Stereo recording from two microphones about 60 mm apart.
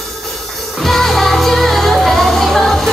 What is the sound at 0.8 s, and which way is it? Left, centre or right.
Music, centre.